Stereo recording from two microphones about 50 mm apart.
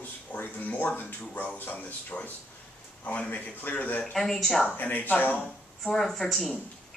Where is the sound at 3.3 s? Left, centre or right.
Left.